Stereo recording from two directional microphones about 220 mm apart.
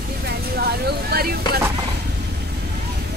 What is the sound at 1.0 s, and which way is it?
Vehicle, 45° right (ahead or behind).